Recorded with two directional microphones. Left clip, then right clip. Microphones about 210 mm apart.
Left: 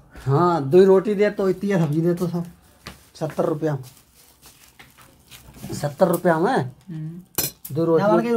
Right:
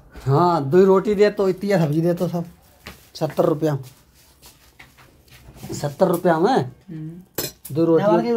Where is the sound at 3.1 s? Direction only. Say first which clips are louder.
Right 4 dB; 25° right (ahead or behind).